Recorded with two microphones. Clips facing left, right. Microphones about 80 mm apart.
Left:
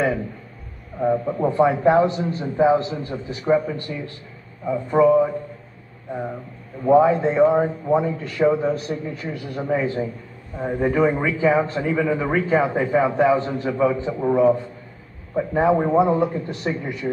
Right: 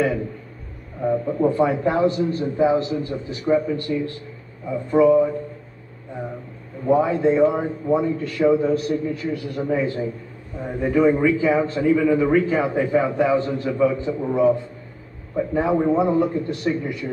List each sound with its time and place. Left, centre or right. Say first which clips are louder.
1.0 s a man's voice: even; left
3.9 s speech: right 7 dB; centre
4.6 s a man's voice: even; left
6.9 s a man's voice: left 2 dB; left
9.6 s a man's voice: left 1 dB; left